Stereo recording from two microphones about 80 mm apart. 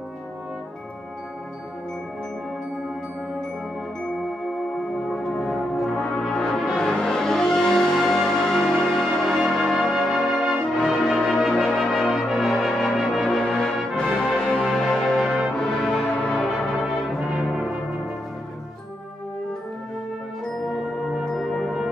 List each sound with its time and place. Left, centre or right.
5.0 s brass instrument: centre
14.0 s music: centre
15.2 s music: centre
15.5 s brass instrument: centre
16.6 s brass instrument: centre
20.6 s music: centre